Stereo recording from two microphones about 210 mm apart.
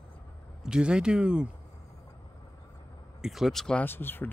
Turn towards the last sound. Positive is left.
turn(degrees=10)  # may be behind; listen again after turning